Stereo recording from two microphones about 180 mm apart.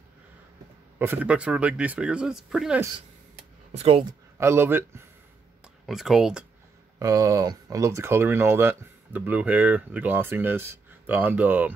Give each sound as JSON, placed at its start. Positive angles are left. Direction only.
{"t": 0.9, "sound": "speech", "side_deg": -10}
{"t": 3.7, "sound": "speech", "side_deg": -30}
{"t": 4.4, "sound": "speech", "side_deg": -15}
{"t": 5.9, "sound": "speech", "side_deg": 0}
{"t": 7.0, "sound": "speech", "side_deg": -20}